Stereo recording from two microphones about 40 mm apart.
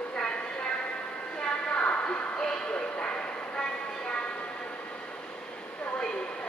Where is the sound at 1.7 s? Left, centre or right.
Left.